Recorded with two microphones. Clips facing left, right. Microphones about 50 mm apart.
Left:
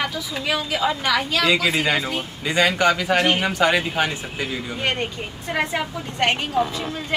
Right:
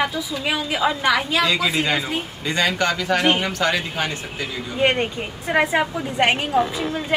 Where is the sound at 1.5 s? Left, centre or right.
Centre.